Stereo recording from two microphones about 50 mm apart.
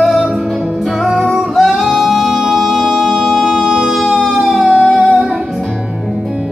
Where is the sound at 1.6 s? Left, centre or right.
Centre.